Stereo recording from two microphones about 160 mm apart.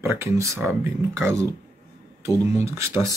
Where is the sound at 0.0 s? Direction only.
15° right (ahead or behind).